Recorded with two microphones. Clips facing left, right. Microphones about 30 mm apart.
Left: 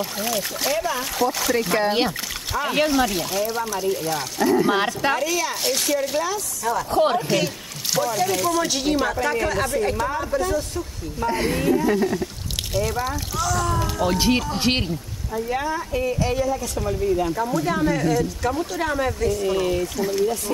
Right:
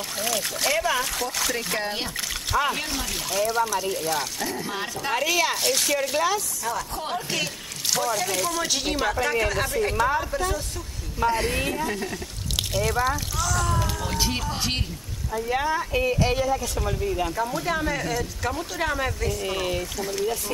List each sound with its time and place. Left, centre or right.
0.2 s speech: centre
5.1 s speech: centre
5.5 s speech: centre
6.9 s speech: left
7.2 s speech: centre
14.0 s speech: centre
14.6 s speech: left
15.3 s speech: centre
20.0 s speech: centre